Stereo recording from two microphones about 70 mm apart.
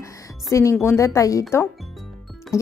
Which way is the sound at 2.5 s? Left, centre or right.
Left.